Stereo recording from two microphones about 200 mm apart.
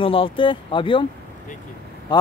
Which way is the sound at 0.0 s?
25° left (ahead or behind).